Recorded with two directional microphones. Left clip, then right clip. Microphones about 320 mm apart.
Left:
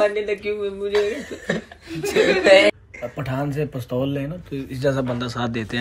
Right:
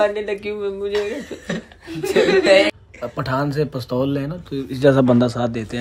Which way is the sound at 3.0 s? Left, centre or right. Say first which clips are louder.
Right 5 dB; centre.